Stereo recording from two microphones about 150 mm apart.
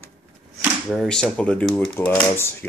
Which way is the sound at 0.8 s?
5° left (ahead or behind).